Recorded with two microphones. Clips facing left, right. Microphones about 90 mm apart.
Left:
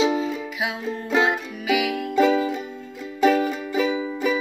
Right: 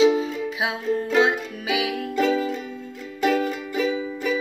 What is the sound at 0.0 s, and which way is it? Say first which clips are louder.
Music: right 3 dB; 35° left (ahead or behind).